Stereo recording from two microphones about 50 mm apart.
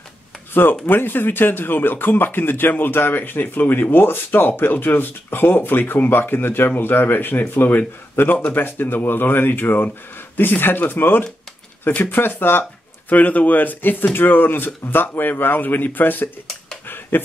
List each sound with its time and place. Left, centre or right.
0.5 s speech: left
13.1 s speech: left
16.8 s a sound: left